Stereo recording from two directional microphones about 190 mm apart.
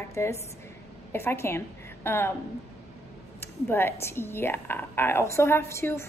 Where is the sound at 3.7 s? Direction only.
15° left (ahead or behind).